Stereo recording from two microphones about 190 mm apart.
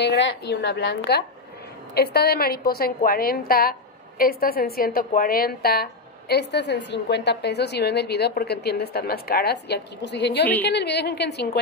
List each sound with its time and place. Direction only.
0.0 s a woman's voice: 65° left (ahead or behind)